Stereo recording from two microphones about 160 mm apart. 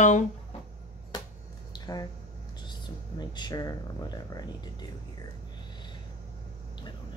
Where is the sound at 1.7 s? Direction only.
25° left (ahead or behind).